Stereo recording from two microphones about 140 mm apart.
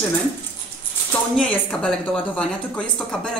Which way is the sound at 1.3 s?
5° left (ahead or behind).